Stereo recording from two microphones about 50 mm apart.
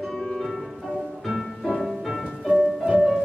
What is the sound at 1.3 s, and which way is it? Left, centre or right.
Music, centre.